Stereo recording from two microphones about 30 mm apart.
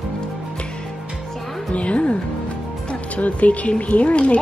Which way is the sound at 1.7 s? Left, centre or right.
Left.